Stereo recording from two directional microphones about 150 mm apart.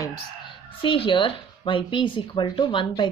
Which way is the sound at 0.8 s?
35° left (ahead or behind).